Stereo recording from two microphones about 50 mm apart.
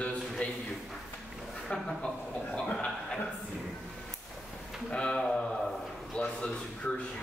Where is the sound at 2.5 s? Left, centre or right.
Centre.